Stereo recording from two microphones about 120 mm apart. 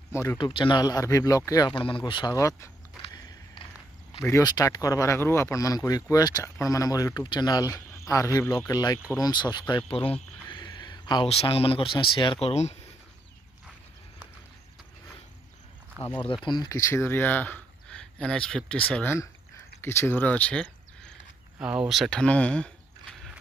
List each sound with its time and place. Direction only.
0.1 s speech: 20° left (ahead or behind)
0.4 s speech: 45° left (ahead or behind)
1.7 s speech: 45° left (ahead or behind)
2.3 s speech: 25° left (ahead or behind)
4.3 s speech: 30° left (ahead or behind); by 10.1 s 50° left (ahead or behind)
10.5 s a sound: 35° left (ahead or behind)
11.2 s speech: 55° left (ahead or behind)
16.0 s speech: 20° right (ahead or behind)
16.4 s speech: 35° left (ahead or behind); by 21.1 s 10° left (ahead or behind)
21.5 s speech: 10° right (ahead or behind)
22.2 s speech: 10° left (ahead or behind)